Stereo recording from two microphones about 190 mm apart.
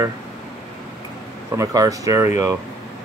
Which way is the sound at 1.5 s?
15° right (ahead or behind).